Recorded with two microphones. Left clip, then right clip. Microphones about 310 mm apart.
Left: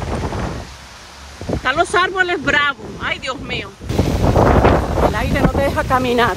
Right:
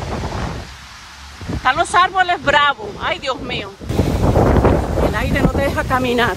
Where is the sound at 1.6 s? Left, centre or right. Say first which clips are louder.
Right 2 dB; centre.